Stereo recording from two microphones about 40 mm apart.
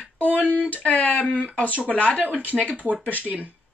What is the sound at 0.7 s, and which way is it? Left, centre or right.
Speech, left.